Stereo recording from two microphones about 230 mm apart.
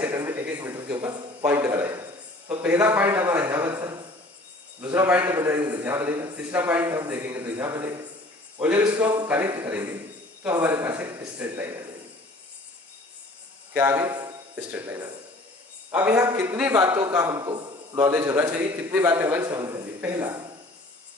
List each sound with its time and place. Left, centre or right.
0.0 s a sound: centre
2.6 s a man's voice: centre
13.7 s a man's voice: centre